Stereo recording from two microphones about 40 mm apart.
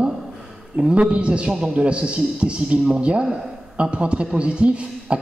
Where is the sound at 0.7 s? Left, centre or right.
Right.